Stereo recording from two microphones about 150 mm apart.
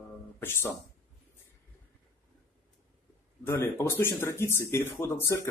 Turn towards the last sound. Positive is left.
turn(degrees=20)  # may be behind; listen again after turning